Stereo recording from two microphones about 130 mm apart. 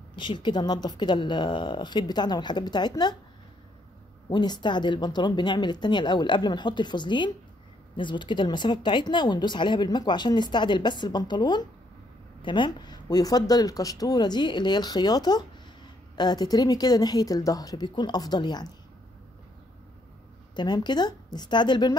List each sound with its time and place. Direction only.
0.1 s speech: 35° left (ahead or behind)
4.3 s speech: 35° left (ahead or behind)
20.5 s speech: 35° left (ahead or behind)